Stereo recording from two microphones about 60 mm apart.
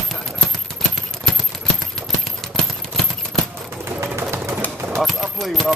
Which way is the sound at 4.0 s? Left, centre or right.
Right.